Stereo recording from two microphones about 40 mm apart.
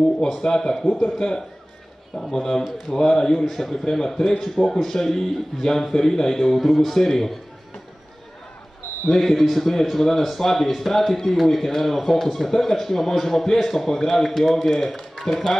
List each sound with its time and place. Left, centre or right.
0.4 s a man's voice: centre
9.1 s a man's voice: centre